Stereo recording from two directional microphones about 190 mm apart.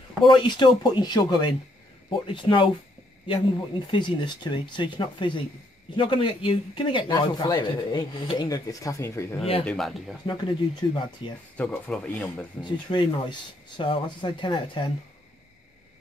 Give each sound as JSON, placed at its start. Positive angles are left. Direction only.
{"t": 0.2, "sound": "speech", "side_deg": 25}
{"t": 3.9, "sound": "speech", "side_deg": 25}
{"t": 9.4, "sound": "speech", "side_deg": 30}
{"t": 9.7, "sound": "speech", "side_deg": 0}
{"t": 10.2, "sound": "speech", "side_deg": 25}
{"t": 11.5, "sound": "speech", "side_deg": 5}
{"t": 12.6, "sound": "speech", "side_deg": 25}